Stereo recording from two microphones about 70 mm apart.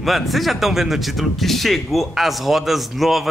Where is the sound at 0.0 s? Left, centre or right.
Centre.